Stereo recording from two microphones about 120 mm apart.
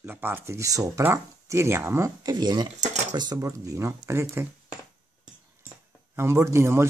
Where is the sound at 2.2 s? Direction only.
35° right (ahead or behind); by 4.4 s 20° right (ahead or behind).